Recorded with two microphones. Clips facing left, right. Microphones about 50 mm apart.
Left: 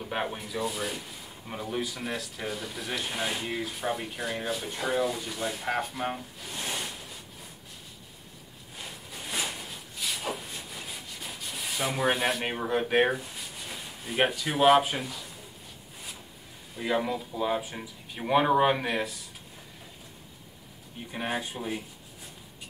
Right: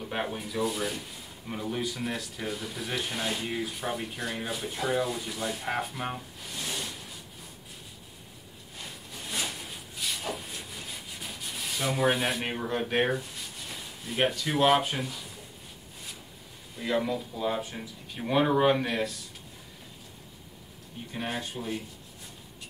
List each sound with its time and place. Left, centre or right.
0.0 s speech: centre
3.2 s speech: centre
3.5 s speech: centre
6.5 s a sound: left
9.1 s a sound: centre
9.7 s rub: centre
12.5 s speech: centre
16.7 s speech: centre
21.1 s speech: centre